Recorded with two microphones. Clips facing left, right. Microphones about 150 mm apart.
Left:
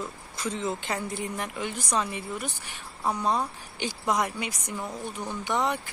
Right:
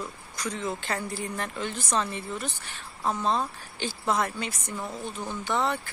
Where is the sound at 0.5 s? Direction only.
20° left (ahead or behind).